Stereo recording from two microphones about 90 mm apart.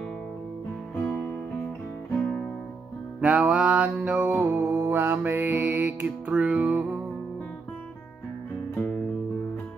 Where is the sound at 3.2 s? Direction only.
15° right (ahead or behind).